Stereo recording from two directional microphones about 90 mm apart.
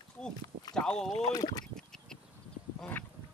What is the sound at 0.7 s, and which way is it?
Speech, 10° left (ahead or behind).